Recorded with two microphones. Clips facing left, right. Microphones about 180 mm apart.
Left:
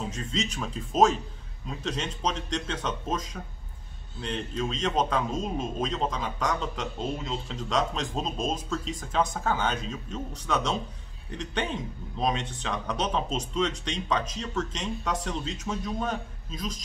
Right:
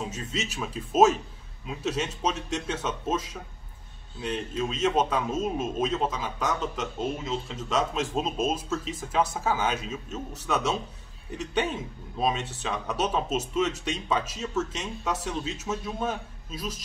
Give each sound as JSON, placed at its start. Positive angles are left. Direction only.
{"t": 0.1, "sound": "a man's voice", "side_deg": -5}
{"t": 12.2, "sound": "a man's voice", "side_deg": -5}